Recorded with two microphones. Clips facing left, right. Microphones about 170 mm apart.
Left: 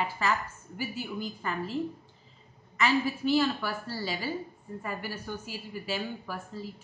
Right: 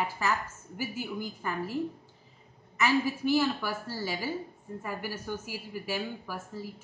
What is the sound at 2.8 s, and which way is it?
A woman's voice, 10° right (ahead or behind).